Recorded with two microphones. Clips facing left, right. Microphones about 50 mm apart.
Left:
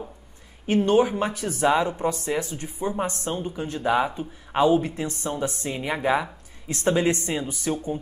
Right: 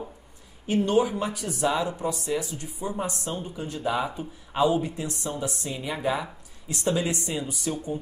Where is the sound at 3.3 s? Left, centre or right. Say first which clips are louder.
Left 4 dB; left.